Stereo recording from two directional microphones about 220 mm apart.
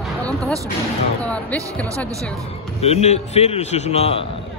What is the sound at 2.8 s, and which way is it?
A man's voice, 30° left (ahead or behind).